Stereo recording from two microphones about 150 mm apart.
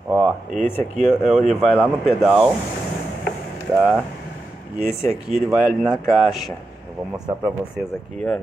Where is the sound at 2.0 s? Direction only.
5° right (ahead or behind).